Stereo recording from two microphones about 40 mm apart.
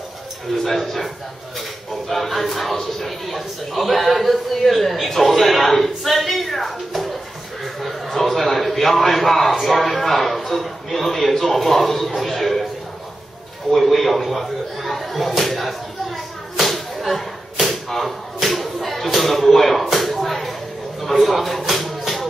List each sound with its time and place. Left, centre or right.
0.7 s a man's voice: centre
13.7 s a man's voice: centre
16.5 s a sound: centre